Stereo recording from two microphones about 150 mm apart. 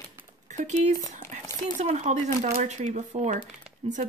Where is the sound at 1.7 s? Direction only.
50° right (ahead or behind).